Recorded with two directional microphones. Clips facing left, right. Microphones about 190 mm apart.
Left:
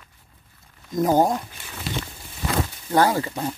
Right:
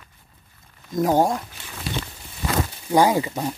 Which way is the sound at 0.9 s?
Centre (ahead or behind).